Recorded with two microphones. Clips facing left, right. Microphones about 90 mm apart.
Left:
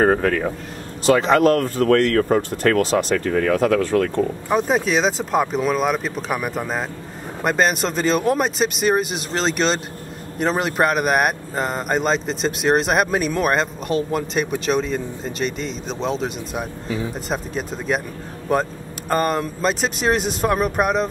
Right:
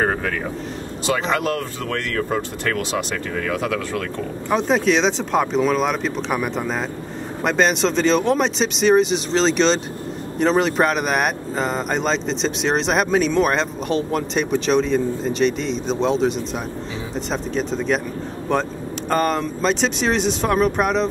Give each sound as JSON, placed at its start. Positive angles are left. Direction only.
{"t": 0.0, "sound": "speech", "side_deg": 45}
{"t": 4.5, "sound": "speech", "side_deg": 5}